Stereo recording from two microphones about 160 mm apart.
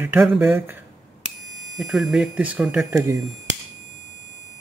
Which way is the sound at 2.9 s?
20° right (ahead or behind).